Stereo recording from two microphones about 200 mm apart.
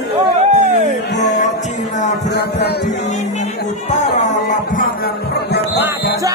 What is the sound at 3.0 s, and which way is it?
Music, 35° left (ahead or behind).